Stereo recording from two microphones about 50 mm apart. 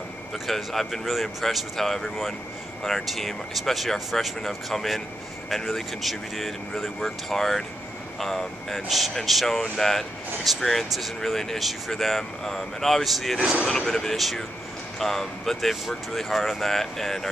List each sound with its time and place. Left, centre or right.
0.5 s speech: centre